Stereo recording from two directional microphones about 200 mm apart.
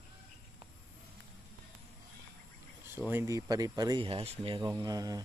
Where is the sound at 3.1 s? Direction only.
15° right (ahead or behind).